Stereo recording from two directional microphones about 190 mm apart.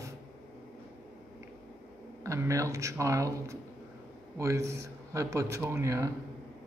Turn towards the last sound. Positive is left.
turn(degrees=-15)  # may be behind; listen again after turning